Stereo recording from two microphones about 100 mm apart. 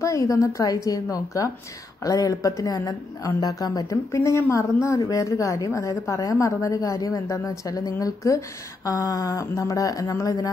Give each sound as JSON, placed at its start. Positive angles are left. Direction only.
{"t": 0.0, "sound": "a woman's voice", "side_deg": 30}